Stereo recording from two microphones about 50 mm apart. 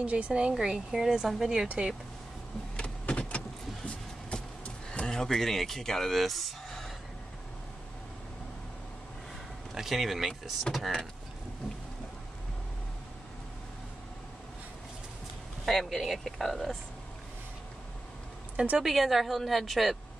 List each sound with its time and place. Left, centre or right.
0.0 s speech: right
2.8 s vehicle: left
5.0 s speech: centre
9.8 s a woman's voice: centre
15.6 s a woman's voice: centre
18.8 s a woman's voice: centre